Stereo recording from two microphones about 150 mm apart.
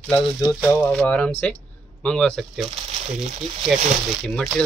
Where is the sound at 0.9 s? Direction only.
10° left (ahead or behind).